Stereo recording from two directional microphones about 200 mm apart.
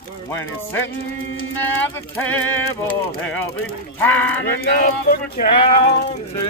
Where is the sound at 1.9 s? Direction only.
10° left (ahead or behind).